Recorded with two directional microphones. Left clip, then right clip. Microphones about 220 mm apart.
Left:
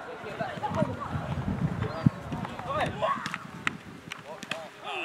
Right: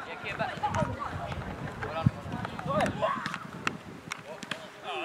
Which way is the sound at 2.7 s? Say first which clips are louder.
Even; centre (ahead or behind).